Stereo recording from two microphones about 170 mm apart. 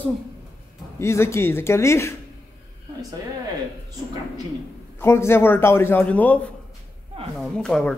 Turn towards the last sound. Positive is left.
turn(degrees=5)  # may be behind; listen again after turning